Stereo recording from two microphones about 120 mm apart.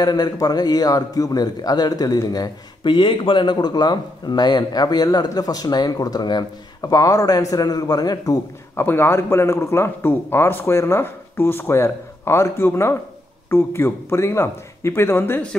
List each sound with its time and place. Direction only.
0.0 s a man's voice: 35° left (ahead or behind)
8.7 s a man's voice: 20° left (ahead or behind)